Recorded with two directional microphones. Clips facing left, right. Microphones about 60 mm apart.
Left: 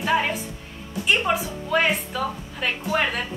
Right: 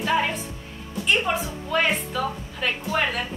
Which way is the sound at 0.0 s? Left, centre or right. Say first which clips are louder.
Left 1 dB; centre.